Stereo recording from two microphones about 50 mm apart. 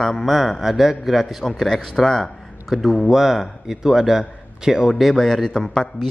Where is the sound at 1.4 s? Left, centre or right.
Centre.